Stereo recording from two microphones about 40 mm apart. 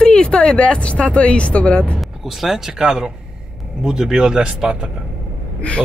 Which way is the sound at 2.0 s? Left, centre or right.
Centre.